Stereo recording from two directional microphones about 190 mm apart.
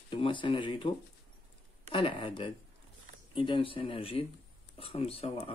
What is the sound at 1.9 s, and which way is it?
Speech, 25° left (ahead or behind).